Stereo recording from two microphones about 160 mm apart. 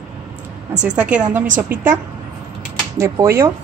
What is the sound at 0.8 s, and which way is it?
A woman's voice, 10° right (ahead or behind).